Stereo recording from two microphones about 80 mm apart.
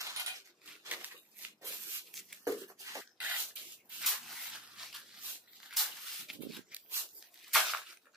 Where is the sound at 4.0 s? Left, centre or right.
Centre.